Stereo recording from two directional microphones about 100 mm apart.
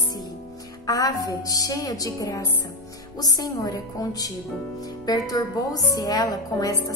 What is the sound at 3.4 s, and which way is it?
Speech, 40° left (ahead or behind).